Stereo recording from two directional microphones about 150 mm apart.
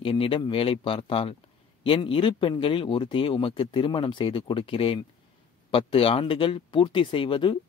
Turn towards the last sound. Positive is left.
turn(degrees=35)  # may be behind; listen again after turning